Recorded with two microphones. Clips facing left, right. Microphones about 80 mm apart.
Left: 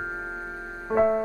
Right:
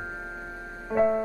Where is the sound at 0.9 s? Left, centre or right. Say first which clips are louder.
Left 2 dB; left.